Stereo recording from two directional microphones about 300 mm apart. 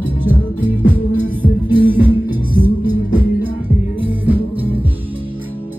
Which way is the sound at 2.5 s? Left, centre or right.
Centre.